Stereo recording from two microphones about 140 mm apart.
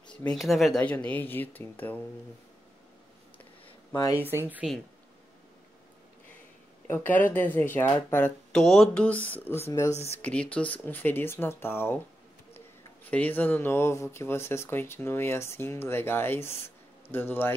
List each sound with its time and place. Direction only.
0.1 s speech: 5° left (ahead or behind)
3.6 s a sound: 30° left (ahead or behind)
4.3 s speech: 15° right (ahead or behind)
6.9 s speech: 15° left (ahead or behind)
9.9 s speech: 45° left (ahead or behind)
10.2 s speech: 10° left (ahead or behind)